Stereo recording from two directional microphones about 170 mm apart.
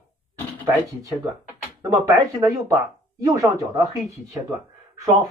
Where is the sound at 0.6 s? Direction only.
20° right (ahead or behind).